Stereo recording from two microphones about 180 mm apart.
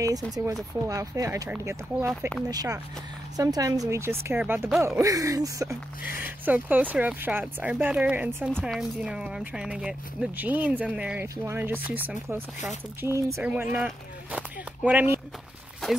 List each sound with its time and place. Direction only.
0.0 s speech: 20° right (ahead or behind)
6.0 s speech: 55° left (ahead or behind)
6.4 s speech: 10° right (ahead or behind)